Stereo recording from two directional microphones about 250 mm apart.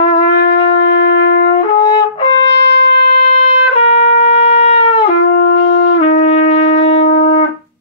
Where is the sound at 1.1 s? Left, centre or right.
Left.